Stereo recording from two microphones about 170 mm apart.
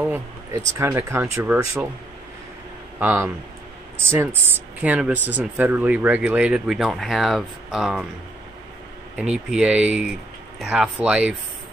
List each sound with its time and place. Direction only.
0.0 s a sound: 5° right (ahead or behind)
0.7 s speech: 15° right (ahead or behind)
3.0 s speech: 10° right (ahead or behind)
9.1 s speech: 5° right (ahead or behind)